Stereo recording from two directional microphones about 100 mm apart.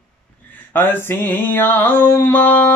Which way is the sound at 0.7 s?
20° left (ahead or behind).